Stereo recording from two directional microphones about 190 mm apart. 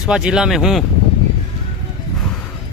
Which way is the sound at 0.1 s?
5° right (ahead or behind).